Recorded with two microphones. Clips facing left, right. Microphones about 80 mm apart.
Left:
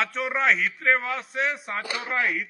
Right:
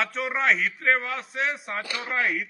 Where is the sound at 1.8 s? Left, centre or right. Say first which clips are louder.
Left 1 dB; left.